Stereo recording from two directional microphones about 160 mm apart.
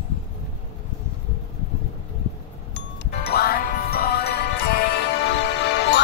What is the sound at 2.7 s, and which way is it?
Music, 90° left.